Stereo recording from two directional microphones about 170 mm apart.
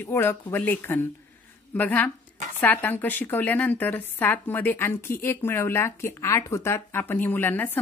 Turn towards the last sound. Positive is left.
turn(degrees=10)  # may be behind; listen again after turning